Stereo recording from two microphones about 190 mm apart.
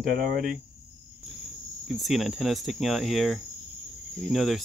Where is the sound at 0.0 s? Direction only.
55° right (ahead or behind).